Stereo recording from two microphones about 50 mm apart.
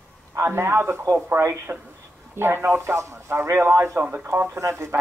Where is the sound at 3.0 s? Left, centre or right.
Right.